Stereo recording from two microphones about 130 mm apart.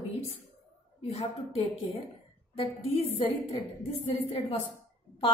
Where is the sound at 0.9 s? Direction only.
50° left (ahead or behind).